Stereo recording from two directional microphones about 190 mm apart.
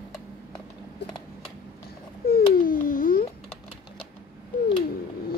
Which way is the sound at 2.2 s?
50° left (ahead or behind).